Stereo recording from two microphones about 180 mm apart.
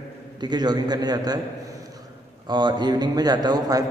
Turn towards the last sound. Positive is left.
turn(degrees=-20)  # may be behind; listen again after turning